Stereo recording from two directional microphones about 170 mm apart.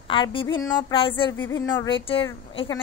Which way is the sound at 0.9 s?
30° left (ahead or behind).